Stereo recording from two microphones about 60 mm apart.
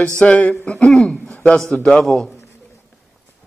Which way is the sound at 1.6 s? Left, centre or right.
Centre.